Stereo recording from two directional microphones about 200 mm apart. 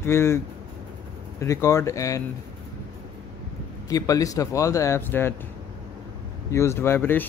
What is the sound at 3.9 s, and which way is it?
Speech, 15° left (ahead or behind).